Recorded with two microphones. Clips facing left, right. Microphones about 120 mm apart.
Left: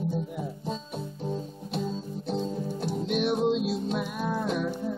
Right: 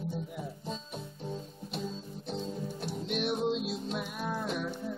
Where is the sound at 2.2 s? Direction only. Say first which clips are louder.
Left 6 dB; 35° left (ahead or behind).